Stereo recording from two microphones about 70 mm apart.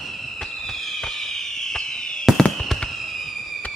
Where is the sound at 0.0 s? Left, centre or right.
Centre.